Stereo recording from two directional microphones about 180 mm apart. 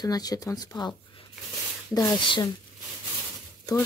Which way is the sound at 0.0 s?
20° left (ahead or behind).